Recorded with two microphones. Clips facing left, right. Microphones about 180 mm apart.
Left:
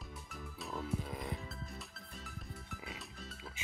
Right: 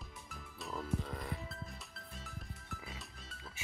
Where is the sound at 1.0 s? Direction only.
15° left (ahead or behind).